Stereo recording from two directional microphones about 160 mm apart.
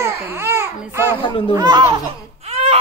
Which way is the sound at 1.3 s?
30° left (ahead or behind).